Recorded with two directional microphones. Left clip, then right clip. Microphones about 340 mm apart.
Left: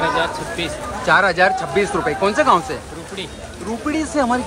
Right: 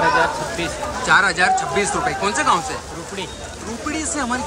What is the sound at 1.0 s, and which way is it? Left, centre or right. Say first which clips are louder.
Speech: left 1 dB; centre.